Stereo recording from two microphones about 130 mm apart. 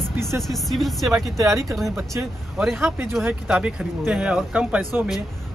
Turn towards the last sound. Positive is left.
turn(degrees=-10)  # may be behind; listen again after turning